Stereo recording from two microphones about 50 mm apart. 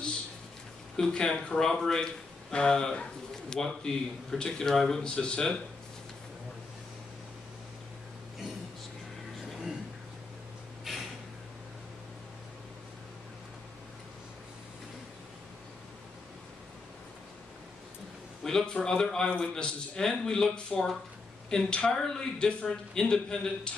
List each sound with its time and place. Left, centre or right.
0.9 s a man's voice: centre
10.9 s a sound: centre
18.4 s a man's voice: centre